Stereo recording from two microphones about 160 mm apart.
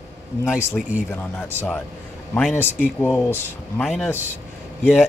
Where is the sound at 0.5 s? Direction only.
5° right (ahead or behind).